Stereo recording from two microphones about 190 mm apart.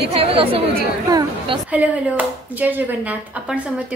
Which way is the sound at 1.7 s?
10° right (ahead or behind).